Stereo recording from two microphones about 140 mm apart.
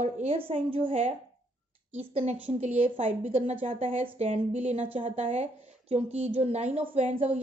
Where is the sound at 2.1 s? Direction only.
45° right (ahead or behind).